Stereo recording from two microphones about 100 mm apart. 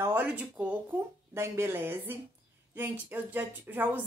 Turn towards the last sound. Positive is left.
turn(degrees=-15)  # may be behind; listen again after turning